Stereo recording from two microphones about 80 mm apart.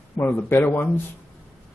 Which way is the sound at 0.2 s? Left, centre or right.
Left.